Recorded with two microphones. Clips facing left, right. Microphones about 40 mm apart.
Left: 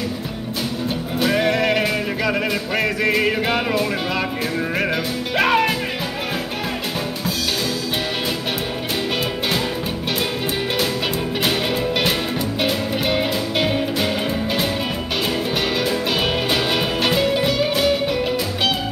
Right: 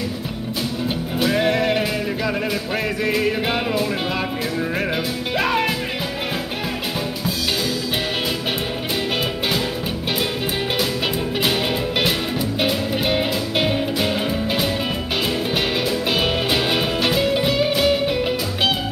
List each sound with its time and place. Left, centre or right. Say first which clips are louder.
3.0 s music: left 2 dB; centre
3.4 s music: left 1 dB; centre
11.4 s music: left 1 dB; centre
16.1 s music: even; centre
17.0 s music: left 2 dB; centre
17.3 s music: even; centre